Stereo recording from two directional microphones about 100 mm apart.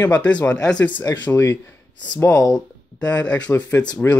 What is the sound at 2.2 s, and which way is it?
Speech, 30° left (ahead or behind).